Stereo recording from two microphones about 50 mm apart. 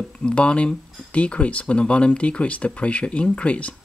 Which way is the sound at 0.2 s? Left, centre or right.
Left.